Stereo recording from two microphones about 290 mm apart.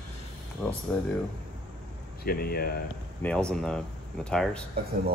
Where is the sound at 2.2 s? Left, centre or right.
Left.